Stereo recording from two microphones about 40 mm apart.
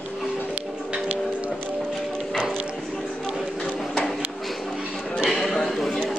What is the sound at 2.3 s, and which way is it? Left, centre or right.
Music, centre.